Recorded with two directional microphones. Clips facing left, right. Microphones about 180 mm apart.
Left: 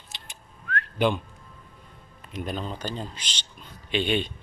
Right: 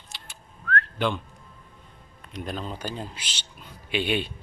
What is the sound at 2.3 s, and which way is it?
Speech, centre (ahead or behind).